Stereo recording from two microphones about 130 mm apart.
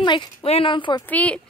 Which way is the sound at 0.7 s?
40° left (ahead or behind).